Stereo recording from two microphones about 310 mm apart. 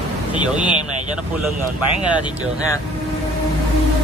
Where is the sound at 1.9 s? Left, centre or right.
Centre.